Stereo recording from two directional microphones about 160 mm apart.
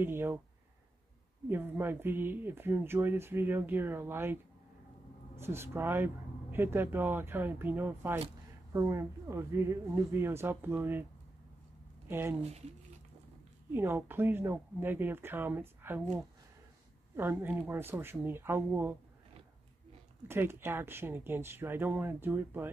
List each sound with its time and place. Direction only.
0.0 s speech: 15° right (ahead or behind)
1.5 s speech: 15° right (ahead or behind)
12.1 s speech: 15° right (ahead or behind)
13.7 s speech: 15° right (ahead or behind)
17.2 s speech: 15° right (ahead or behind)
20.2 s speech: 15° right (ahead or behind)